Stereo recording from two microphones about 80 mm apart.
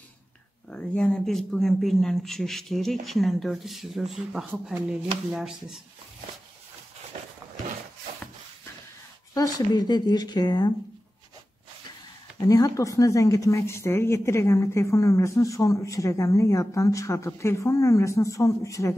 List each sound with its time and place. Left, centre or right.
0.7 s speech: centre
9.3 s speech: left
12.4 s speech: left